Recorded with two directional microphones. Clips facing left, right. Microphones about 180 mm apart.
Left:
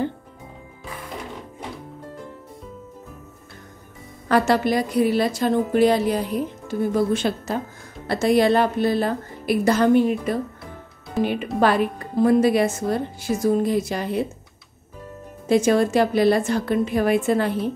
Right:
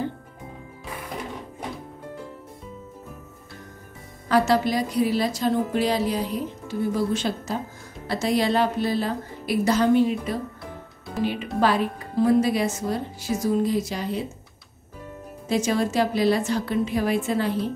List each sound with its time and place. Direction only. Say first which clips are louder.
4.3 s a woman's voice: left 2 dB; 55° left (ahead or behind)
11.6 s a woman's voice: left 3 dB; 55° left (ahead or behind)
15.4 s a woman's voice: left 6 dB; 55° left (ahead or behind)